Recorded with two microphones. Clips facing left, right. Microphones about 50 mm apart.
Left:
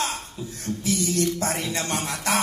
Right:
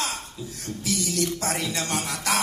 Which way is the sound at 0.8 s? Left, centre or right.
Left.